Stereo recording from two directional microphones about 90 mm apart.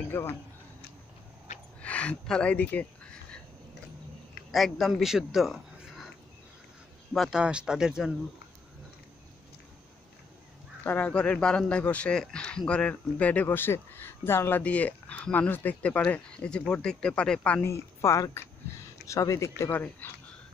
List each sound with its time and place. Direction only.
0.1 s speech: 25° left (ahead or behind)
1.8 s a sound: 15° left (ahead or behind)
4.5 s a man's voice: centre (ahead or behind)
7.2 s speech: 5° right (ahead or behind)
10.8 s speech: 20° left (ahead or behind)
14.6 s speech: 15° left (ahead or behind)
17.6 s speech: 35° left (ahead or behind)
19.7 s speech: 20° left (ahead or behind)